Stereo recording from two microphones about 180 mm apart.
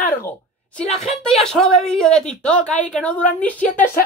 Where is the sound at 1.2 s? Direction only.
5° left (ahead or behind).